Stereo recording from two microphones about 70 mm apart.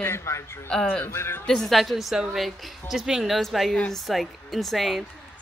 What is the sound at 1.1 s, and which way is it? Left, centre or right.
Speech, left.